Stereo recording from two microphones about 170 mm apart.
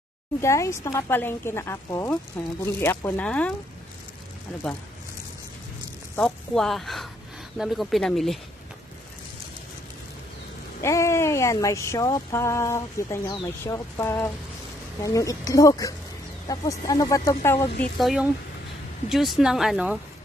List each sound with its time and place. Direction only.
0.4 s speech: 15° left (ahead or behind)
6.1 s speech: centre (ahead or behind)
10.8 s speech: 15° left (ahead or behind)
17.9 s speech: centre (ahead or behind)